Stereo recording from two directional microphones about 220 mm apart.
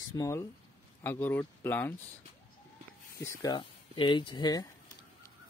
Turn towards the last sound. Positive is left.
turn(degrees=20)  # may be behind; listen again after turning